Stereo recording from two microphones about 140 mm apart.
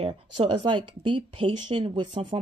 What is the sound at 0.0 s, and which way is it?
Speech, 35° right (ahead or behind).